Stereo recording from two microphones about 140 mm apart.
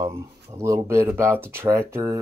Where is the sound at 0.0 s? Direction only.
20° right (ahead or behind).